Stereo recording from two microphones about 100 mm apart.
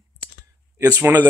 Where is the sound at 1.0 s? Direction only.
20° right (ahead or behind).